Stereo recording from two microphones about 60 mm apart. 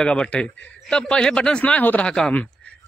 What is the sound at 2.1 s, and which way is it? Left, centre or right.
Speech, centre.